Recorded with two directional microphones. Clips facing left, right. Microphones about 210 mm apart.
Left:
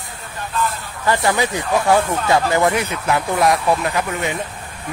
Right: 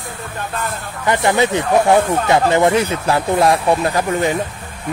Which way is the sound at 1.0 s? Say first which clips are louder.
Right 3 dB; 20° right (ahead or behind).